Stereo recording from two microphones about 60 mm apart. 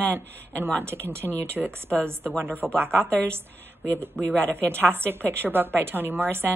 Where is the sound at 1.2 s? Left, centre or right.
Right.